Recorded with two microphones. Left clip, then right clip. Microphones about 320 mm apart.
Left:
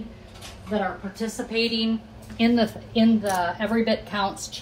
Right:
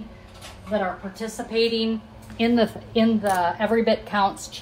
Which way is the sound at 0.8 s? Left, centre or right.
Right.